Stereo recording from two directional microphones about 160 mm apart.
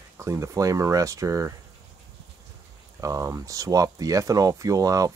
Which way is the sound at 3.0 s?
20° right (ahead or behind).